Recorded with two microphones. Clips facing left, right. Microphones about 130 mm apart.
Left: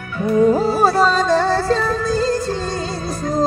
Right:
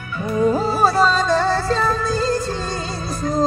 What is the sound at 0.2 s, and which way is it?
Music, 45° left (ahead or behind).